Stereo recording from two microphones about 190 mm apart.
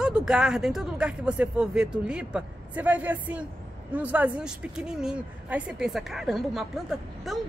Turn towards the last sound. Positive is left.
turn(degrees=0)  # may be behind; listen again after turning